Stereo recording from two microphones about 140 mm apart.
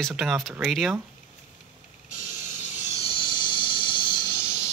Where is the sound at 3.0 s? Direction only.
40° left (ahead or behind).